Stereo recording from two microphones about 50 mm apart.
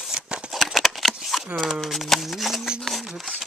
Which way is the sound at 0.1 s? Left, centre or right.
Centre.